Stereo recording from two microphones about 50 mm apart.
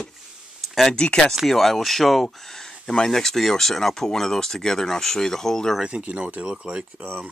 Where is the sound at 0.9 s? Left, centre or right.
Centre.